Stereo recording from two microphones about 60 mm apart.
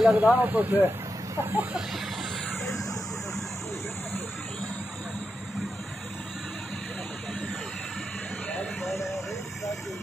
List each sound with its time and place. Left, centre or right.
0.1 s speech: right